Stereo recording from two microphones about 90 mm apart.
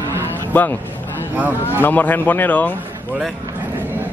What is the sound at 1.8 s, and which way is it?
Speech, 20° left (ahead or behind).